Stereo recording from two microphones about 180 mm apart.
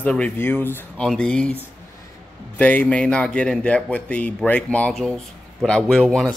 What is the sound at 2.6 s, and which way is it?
Speech, 10° left (ahead or behind).